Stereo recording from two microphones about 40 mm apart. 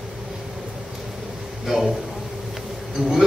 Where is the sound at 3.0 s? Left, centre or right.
Centre.